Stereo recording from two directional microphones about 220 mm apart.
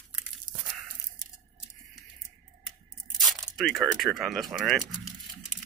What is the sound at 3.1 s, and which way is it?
Crumpling, centre (ahead or behind).